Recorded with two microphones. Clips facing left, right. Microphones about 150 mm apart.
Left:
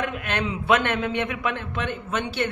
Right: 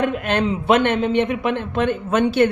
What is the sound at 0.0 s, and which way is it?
Speech, 35° right (ahead or behind).